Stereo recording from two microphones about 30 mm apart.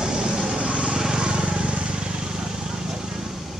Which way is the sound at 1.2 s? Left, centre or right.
Right.